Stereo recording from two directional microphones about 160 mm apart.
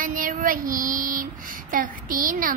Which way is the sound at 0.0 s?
60° right (ahead or behind).